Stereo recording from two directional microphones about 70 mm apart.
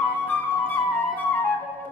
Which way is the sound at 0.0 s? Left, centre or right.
Left.